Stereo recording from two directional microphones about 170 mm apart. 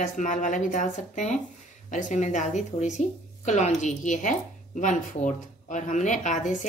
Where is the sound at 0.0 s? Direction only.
50° left (ahead or behind).